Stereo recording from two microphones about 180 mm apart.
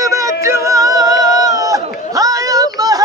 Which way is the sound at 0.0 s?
20° right (ahead or behind).